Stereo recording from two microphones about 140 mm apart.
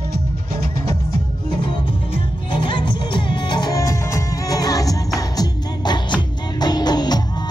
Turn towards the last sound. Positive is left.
turn(degrees=30)  # may be behind; listen again after turning